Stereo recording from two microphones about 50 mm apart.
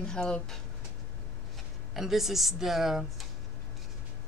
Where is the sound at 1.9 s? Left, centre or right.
Centre.